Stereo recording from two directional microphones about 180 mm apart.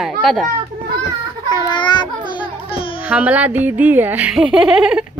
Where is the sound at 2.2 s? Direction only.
30° left (ahead or behind).